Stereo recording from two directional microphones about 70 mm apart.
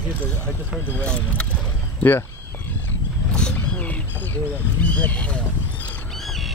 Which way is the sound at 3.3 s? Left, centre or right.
Centre.